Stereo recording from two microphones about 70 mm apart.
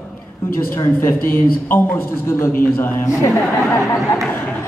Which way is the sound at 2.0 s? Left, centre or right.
Left.